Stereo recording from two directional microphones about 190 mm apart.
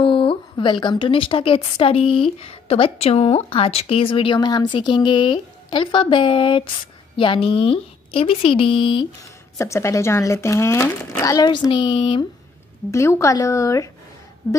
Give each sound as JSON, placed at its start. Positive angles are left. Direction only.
{"t": 0.0, "sound": "a woman's voice", "side_deg": 25}
{"t": 12.9, "sound": "speech", "side_deg": 15}